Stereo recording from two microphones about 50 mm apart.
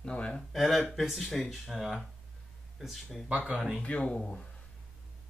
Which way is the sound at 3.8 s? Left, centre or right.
Left.